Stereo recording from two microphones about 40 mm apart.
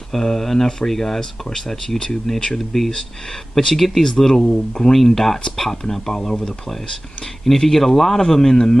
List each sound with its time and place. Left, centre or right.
0.1 s speech: centre